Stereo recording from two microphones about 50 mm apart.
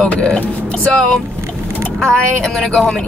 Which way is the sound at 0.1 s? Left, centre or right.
Left.